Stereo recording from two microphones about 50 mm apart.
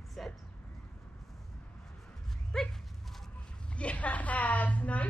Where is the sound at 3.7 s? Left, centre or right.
Left.